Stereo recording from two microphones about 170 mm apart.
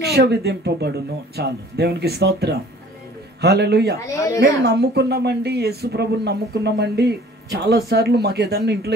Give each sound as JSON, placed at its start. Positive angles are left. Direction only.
{"t": 0.1, "sound": "speech", "side_deg": -70}
{"t": 4.0, "sound": "speech", "side_deg": 20}
{"t": 4.6, "sound": "speech", "side_deg": -70}